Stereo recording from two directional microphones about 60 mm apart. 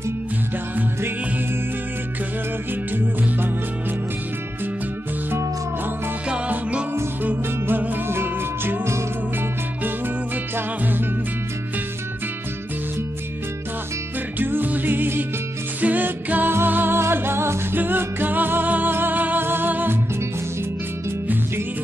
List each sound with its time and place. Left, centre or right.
2.9 s music: right
7.6 s music: right
14.4 s music: right
17.7 s music: right